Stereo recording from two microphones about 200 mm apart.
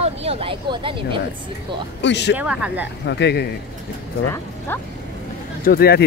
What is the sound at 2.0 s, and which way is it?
Speech, 60° left (ahead or behind).